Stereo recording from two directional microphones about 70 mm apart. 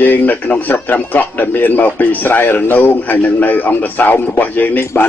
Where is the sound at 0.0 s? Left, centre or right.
Left.